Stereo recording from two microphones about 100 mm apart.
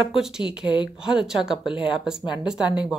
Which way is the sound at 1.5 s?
55° left (ahead or behind).